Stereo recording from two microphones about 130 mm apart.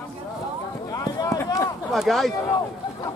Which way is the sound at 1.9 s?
Centre (ahead or behind).